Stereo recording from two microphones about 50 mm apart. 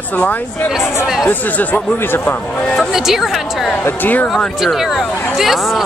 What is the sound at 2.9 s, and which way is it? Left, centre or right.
Speech, centre.